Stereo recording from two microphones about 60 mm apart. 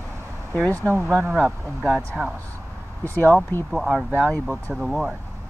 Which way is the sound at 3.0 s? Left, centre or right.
Left.